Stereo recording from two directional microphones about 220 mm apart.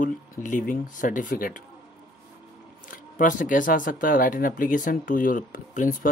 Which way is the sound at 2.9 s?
35° left (ahead or behind).